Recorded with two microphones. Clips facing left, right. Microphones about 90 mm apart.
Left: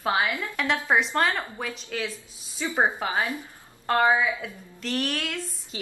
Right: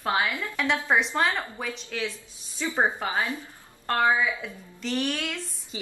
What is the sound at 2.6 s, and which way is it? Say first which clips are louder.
A woman's voice: left 1 dB; 15° left (ahead or behind).